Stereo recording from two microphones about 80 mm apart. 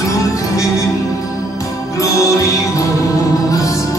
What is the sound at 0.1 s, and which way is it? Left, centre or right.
Music, left.